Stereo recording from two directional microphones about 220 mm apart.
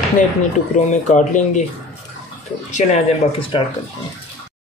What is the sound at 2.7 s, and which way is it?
Speech, 25° left (ahead or behind).